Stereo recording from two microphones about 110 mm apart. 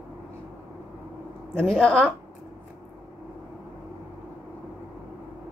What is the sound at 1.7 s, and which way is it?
Speech, 5° left (ahead or behind).